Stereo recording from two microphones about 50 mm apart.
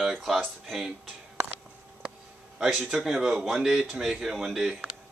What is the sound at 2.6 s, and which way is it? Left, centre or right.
A man's voice, centre.